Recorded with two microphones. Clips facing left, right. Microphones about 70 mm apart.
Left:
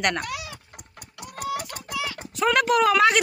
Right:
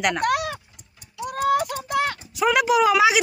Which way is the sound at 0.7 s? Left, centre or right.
Left.